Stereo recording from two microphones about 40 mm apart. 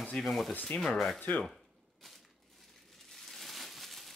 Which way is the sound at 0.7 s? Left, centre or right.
Left.